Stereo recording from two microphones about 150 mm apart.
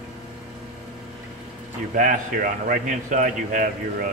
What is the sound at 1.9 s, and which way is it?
A man's voice, 65° right (ahead or behind).